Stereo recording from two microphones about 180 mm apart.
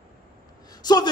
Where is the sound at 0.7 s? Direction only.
20° left (ahead or behind).